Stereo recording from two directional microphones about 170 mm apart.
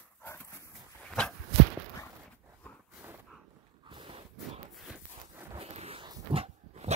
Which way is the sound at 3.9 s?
30° right (ahead or behind).